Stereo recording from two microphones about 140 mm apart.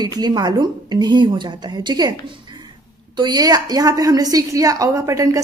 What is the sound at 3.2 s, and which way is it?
A woman's voice, 30° right (ahead or behind).